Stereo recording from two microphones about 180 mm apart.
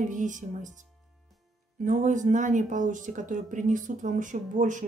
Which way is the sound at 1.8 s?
45° right (ahead or behind).